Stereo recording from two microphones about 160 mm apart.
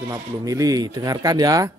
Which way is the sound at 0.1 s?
20° right (ahead or behind).